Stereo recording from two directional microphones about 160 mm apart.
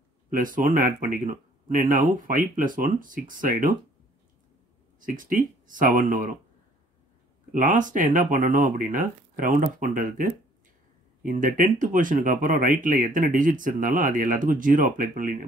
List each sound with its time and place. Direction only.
0.3 s speech: 55° right (ahead or behind)
5.0 s speech: 55° right (ahead or behind)
7.5 s speech: 55° right (ahead or behind)